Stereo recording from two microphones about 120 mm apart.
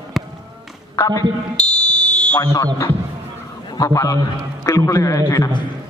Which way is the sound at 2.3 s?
25° left (ahead or behind).